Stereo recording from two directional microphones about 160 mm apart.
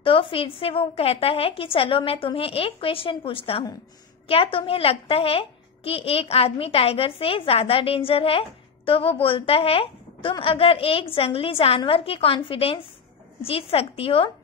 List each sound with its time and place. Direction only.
0.0 s a child's voice: 35° left (ahead or behind)